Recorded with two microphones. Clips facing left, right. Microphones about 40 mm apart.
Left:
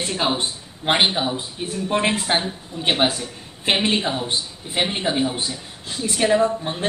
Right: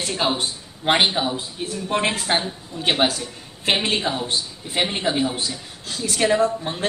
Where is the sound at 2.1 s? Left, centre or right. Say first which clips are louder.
Left 1 dB; left; by 5.4 s centre.